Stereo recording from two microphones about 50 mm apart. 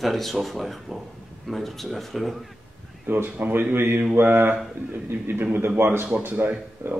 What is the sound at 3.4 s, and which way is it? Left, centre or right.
A man's voice, right.